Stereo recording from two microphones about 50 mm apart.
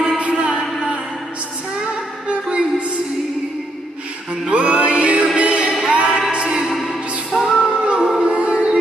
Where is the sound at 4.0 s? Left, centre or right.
Right.